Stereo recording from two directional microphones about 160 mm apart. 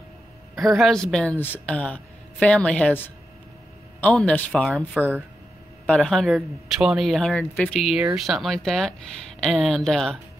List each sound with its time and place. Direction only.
0.7 s speech: centre (ahead or behind)
4.0 s speech: 5° left (ahead or behind)
7.8 s speech: 5° right (ahead or behind)